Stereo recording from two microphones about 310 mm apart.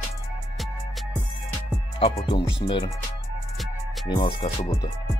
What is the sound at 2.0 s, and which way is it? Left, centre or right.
Speech, centre.